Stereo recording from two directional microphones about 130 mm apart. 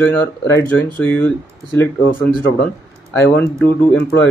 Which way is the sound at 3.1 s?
20° left (ahead or behind).